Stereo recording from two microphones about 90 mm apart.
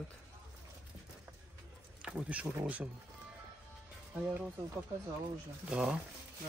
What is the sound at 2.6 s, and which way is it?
Speech, 15° right (ahead or behind).